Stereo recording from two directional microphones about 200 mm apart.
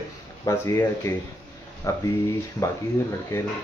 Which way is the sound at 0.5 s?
15° left (ahead or behind).